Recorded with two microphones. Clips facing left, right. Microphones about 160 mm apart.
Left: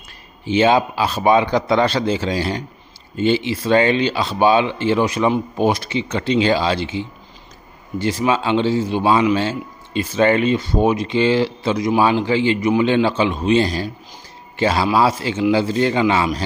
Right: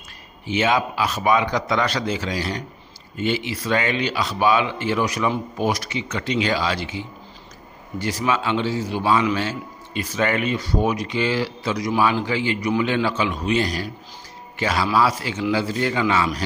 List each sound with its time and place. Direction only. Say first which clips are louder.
0.5 s a man's voice: left 6 dB; 30° left (ahead or behind)